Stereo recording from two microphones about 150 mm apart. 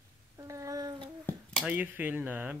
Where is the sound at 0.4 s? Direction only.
20° right (ahead or behind).